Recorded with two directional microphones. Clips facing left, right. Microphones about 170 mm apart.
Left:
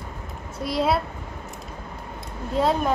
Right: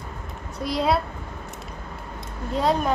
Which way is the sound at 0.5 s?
Centre (ahead or behind).